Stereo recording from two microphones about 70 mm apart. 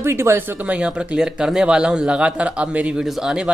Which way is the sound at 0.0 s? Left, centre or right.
Right.